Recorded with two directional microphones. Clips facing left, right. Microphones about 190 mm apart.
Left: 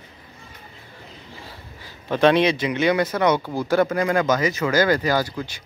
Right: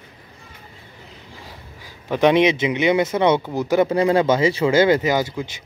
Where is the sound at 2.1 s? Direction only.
15° right (ahead or behind).